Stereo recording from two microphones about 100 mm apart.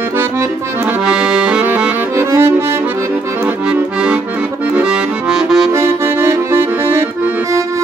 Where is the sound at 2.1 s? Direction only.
25° right (ahead or behind).